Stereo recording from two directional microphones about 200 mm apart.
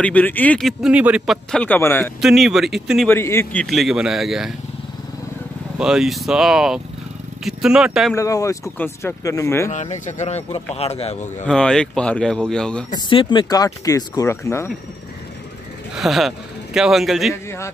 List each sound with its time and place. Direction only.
0.0 s speech: 10° left (ahead or behind)
2.2 s speech: centre (ahead or behind)
3.1 s speech: 10° left (ahead or behind)
3.6 s speech: centre (ahead or behind)
5.8 s speech: 5° right (ahead or behind)
8.1 s speech: 15° left (ahead or behind)
9.7 s speech: 35° left (ahead or behind)
11.4 s speech: 5° left (ahead or behind)
12.9 s speech: 25° left (ahead or behind)
15.9 s speech: centre (ahead or behind)
17.3 s speech: 15° left (ahead or behind)